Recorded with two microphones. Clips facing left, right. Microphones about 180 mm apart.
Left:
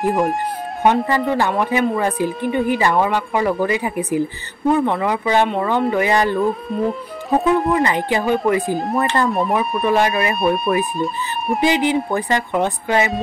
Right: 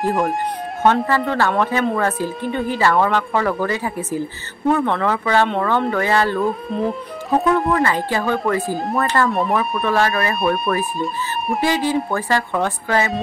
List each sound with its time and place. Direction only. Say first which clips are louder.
0.1 s speech: left 1 dB; centre (ahead or behind)
0.8 s speech: left 1 dB; 10° left (ahead or behind)
6.4 s speech: left 1 dB; centre (ahead or behind)
7.8 s speech: left 1 dB; 20° left (ahead or behind)
8.7 s speech: left 1 dB; centre (ahead or behind)
9.8 s speech: left 2 dB; 15° left (ahead or behind)
10.4 s speech: left 3 dB; centre (ahead or behind)
11.6 s speech: left 2 dB; 15° left (ahead or behind)